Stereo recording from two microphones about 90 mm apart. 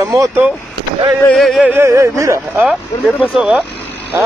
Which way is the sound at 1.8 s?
35° right (ahead or behind).